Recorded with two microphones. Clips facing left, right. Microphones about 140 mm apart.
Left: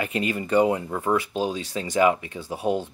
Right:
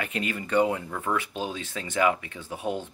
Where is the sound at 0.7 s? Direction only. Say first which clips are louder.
Left 5 dB; 20° left (ahead or behind).